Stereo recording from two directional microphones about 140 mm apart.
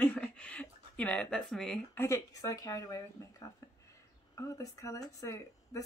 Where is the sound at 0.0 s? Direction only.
10° left (ahead or behind).